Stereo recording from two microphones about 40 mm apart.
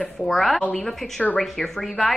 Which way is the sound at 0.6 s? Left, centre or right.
Left.